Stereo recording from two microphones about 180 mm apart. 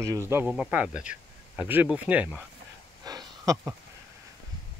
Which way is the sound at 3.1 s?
20° right (ahead or behind).